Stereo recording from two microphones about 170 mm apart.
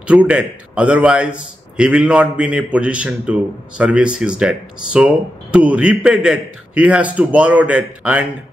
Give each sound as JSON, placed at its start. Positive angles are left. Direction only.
{"t": 0.0, "sound": "a man's voice", "side_deg": -5}